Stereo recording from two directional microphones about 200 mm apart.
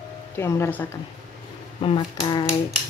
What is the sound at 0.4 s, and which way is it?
Speech, 15° left (ahead or behind).